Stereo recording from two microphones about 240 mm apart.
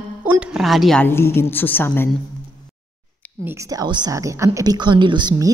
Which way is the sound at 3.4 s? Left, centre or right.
Centre.